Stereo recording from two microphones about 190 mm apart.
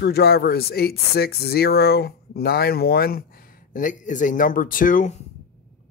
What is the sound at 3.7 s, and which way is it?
Speech, 45° left (ahead or behind).